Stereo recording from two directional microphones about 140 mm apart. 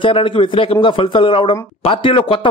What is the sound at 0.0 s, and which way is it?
A man's voice, 40° left (ahead or behind).